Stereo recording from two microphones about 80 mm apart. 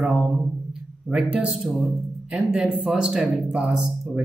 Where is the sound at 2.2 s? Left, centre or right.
Centre.